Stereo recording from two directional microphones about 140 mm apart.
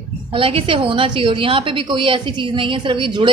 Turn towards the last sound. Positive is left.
turn(degrees=-35)  # may be behind; listen again after turning